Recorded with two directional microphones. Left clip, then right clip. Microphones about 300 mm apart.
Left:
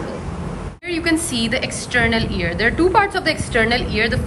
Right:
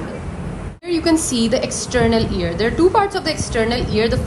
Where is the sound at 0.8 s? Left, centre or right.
Centre.